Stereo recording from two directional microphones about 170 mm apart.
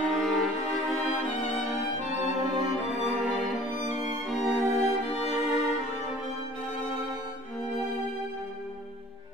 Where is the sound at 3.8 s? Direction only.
45° left (ahead or behind).